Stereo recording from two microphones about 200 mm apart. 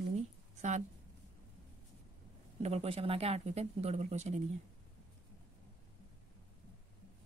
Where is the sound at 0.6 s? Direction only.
35° right (ahead or behind).